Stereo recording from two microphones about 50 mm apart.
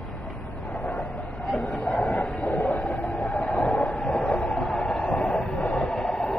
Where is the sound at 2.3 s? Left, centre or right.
Left.